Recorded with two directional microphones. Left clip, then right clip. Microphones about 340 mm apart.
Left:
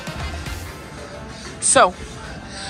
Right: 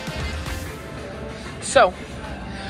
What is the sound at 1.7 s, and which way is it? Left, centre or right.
Speech, centre.